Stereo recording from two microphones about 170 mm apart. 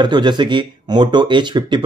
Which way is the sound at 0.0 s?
25° right (ahead or behind).